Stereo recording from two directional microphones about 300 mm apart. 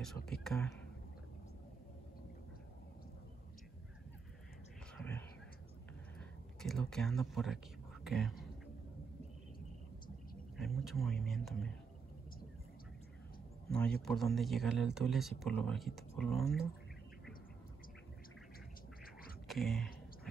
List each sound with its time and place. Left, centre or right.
0.3 s speech: centre
4.9 s whispering: centre
6.1 s a sound: centre
10.6 s speech: centre
13.7 s speech: centre
19.4 s a sound: centre